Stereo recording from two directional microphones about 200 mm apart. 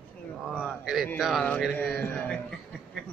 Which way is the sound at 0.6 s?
Centre (ahead or behind).